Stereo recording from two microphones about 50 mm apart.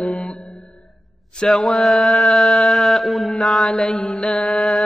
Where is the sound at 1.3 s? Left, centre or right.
Centre.